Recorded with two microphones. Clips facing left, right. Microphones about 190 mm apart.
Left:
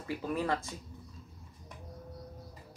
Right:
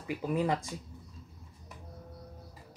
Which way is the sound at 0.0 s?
15° right (ahead or behind).